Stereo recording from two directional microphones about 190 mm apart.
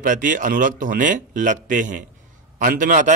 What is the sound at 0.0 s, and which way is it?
A man's voice, 45° right (ahead or behind).